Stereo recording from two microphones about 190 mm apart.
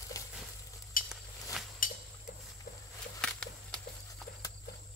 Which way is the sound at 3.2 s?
5° left (ahead or behind).